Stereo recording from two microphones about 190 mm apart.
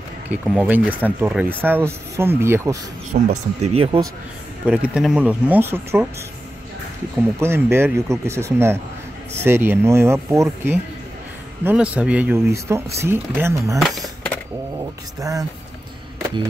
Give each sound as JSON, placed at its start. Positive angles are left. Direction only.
{"t": 0.5, "sound": "speech", "side_deg": -5}
{"t": 3.1, "sound": "speech", "side_deg": -40}
{"t": 4.6, "sound": "speech", "side_deg": -5}
{"t": 7.3, "sound": "speech", "side_deg": -15}
{"t": 13.7, "sound": "a sound", "side_deg": 0}
{"t": 15.1, "sound": "speech", "side_deg": -20}
{"t": 16.2, "sound": "music", "side_deg": -15}